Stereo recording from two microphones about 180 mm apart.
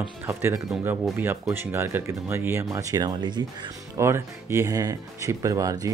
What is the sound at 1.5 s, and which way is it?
Speech, 15° right (ahead or behind).